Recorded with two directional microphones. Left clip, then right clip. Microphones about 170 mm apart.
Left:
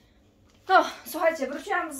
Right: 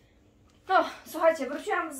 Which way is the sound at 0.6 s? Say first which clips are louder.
Left 4 dB; 35° left (ahead or behind).